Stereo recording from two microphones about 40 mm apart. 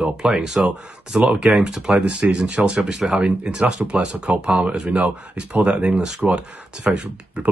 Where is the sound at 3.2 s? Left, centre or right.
Right.